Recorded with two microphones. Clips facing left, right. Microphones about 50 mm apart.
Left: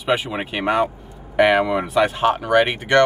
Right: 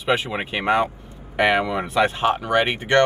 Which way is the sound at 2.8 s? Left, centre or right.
Centre.